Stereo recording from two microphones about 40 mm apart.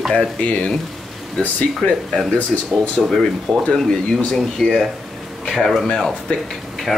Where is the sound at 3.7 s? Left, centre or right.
Centre.